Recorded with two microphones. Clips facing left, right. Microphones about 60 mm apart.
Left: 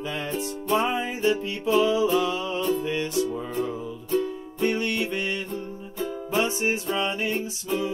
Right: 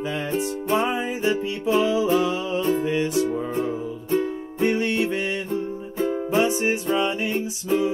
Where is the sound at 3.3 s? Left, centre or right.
Right; by 7.3 s centre.